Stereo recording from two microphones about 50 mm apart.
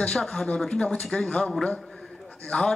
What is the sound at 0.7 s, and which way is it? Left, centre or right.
Speech, left.